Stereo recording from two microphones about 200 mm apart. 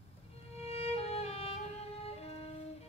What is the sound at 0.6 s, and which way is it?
Music, 30° left (ahead or behind).